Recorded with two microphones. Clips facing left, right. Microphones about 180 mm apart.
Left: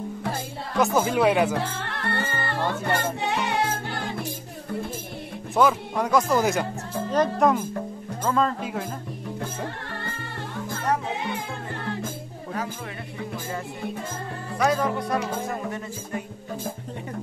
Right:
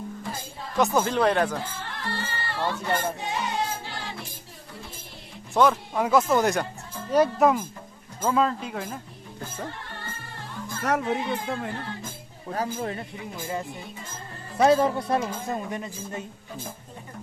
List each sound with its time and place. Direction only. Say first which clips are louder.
0.7 s speech: left 1 dB; centre (ahead or behind)
1.5 s music: left 5 dB; 70° left (ahead or behind); by 4.3 s 50° left (ahead or behind)
5.5 s speech: even; centre (ahead or behind)
8.6 s speech: left 3 dB; 5° left (ahead or behind)
10.8 s a child's voice: right 2 dB; 80° right
14.6 s speech: right 4 dB; 25° right (ahead or behind)